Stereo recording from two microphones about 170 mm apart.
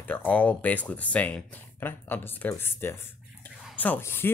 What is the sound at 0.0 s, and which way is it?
Speech, 10° left (ahead or behind).